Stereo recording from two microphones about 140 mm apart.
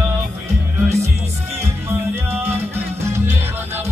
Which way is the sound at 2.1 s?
15° right (ahead or behind).